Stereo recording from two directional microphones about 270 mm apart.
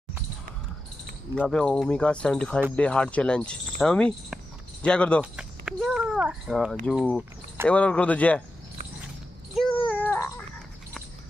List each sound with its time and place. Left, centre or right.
1.3 s a child's voice: centre
10.1 s babbling: centre